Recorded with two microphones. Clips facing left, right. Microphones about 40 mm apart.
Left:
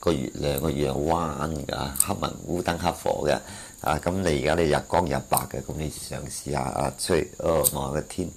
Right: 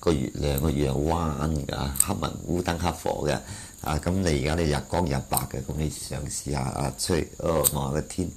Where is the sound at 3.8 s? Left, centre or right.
Centre.